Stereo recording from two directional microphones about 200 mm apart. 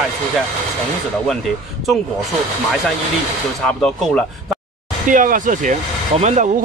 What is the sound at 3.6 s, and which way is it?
Speech, 5° left (ahead or behind).